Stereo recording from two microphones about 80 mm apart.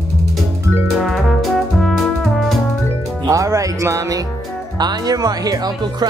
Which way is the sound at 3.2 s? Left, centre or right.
Right.